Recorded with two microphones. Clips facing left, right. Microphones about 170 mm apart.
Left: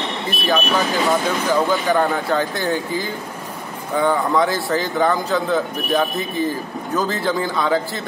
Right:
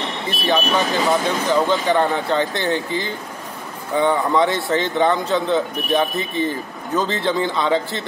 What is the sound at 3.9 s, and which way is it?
Speech, centre (ahead or behind).